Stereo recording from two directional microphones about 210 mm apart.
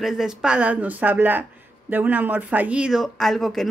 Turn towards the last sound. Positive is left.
turn(degrees=0)  # may be behind; listen again after turning